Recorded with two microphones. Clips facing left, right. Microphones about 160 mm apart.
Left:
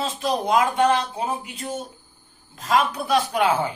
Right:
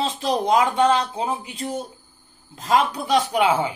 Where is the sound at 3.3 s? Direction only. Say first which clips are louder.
Right 1 dB; 10° right (ahead or behind).